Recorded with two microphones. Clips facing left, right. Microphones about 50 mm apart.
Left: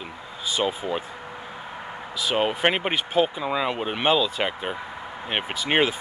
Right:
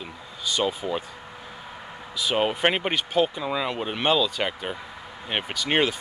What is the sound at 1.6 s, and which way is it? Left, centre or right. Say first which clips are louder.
Vehicle: left 4 dB; centre.